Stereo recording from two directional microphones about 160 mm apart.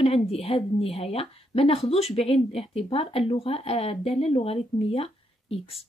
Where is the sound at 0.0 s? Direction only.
40° left (ahead or behind).